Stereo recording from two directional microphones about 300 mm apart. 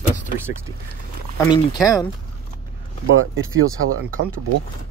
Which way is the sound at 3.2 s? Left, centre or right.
Right.